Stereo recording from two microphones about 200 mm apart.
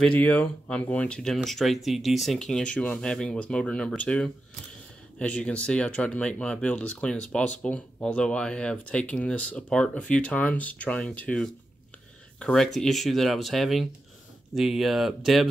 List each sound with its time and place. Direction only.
0.0 s speech: 5° left (ahead or behind)